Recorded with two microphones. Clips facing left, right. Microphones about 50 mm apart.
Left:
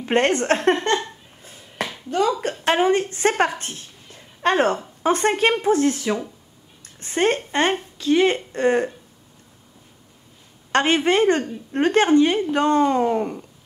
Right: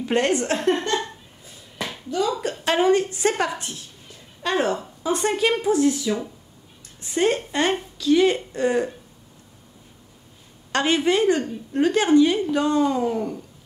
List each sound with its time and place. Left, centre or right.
0.0 s speech: left
1.4 s finger snapping: left
2.0 s a woman's voice: left
6.8 s a sound: left
8.0 s speech: left
10.7 s speech: left